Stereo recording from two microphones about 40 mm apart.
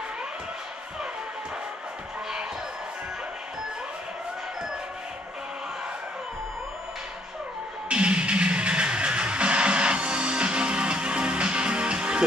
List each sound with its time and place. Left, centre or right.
7.9 s music: right